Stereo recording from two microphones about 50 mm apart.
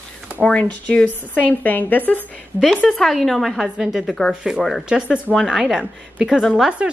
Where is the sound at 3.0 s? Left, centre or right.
Centre.